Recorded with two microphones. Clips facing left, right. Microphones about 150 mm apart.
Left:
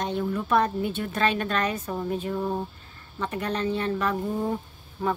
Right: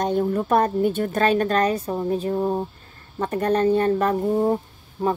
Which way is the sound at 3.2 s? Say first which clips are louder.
Right 8 dB; 45° right (ahead or behind).